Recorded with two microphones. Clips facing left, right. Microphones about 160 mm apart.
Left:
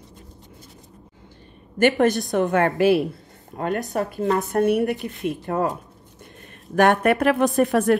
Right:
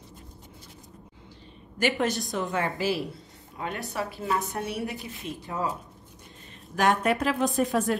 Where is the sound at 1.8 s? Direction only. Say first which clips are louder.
Left 8 dB; 55° left (ahead or behind).